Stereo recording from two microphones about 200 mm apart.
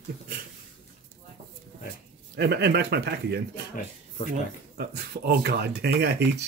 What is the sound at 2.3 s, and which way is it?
Speech, 55° right (ahead or behind).